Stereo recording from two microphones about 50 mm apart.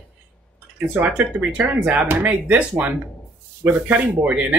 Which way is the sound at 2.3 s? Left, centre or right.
Centre.